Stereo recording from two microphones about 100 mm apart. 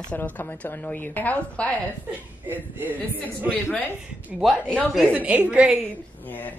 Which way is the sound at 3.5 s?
15° left (ahead or behind).